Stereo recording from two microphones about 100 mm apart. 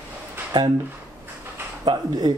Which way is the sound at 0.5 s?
40° right (ahead or behind).